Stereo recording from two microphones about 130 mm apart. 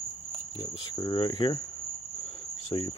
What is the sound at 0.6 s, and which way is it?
Speech, 35° left (ahead or behind).